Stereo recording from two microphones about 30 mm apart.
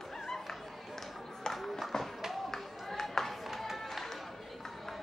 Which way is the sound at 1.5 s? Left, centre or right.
Centre.